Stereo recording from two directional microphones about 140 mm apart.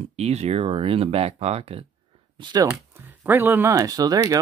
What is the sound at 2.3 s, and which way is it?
Speech, 30° right (ahead or behind).